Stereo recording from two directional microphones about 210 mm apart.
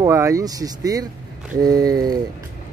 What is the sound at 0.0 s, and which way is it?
Speech, 15° right (ahead or behind).